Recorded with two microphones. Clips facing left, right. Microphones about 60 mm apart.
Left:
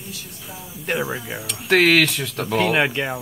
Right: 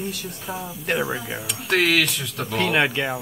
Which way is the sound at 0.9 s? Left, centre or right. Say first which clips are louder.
Even; centre.